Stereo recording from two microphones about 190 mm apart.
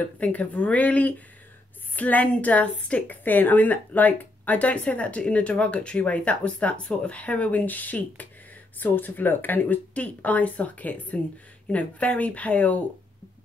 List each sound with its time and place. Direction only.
0.0 s speech: 10° left (ahead or behind)